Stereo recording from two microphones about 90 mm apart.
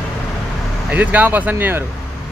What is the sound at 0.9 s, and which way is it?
Speech, 15° right (ahead or behind).